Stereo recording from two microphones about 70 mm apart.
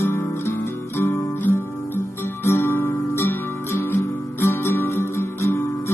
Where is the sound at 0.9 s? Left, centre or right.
Left.